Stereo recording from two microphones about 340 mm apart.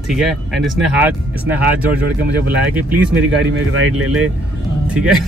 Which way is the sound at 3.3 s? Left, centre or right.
Right.